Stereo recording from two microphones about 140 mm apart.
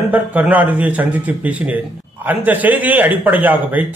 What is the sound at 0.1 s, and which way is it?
A man's voice, 10° right (ahead or behind).